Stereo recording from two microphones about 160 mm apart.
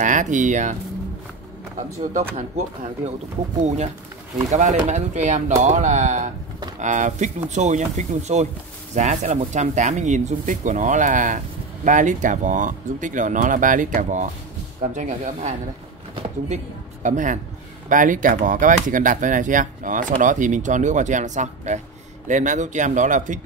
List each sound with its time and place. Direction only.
0.0 s speech: 50° right (ahead or behind)
2.3 s speech: 50° right (ahead or behind)
17.0 s speech: 50° right (ahead or behind)